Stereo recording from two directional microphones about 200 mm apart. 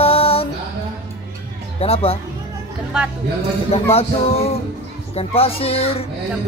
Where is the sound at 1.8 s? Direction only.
30° left (ahead or behind).